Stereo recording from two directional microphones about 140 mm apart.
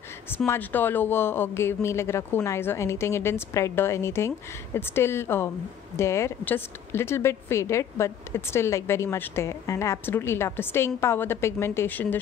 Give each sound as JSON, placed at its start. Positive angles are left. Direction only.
{"t": 0.5, "sound": "speech", "side_deg": 15}